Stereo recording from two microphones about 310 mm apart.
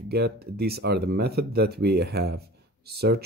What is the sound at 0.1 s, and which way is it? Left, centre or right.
Speech, right.